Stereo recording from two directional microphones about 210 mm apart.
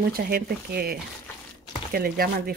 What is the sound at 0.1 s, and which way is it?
Speech, 45° right (ahead or behind).